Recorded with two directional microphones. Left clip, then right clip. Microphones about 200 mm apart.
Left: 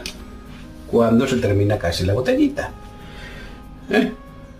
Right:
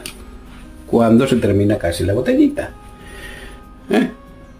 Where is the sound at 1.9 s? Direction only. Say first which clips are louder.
Right 2 dB; 30° right (ahead or behind).